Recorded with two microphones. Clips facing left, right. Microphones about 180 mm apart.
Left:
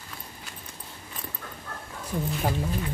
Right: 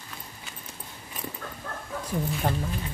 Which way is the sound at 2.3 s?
5° left (ahead or behind).